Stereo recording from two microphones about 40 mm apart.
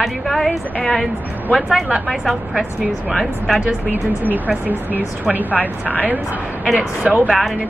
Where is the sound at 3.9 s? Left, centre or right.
Right.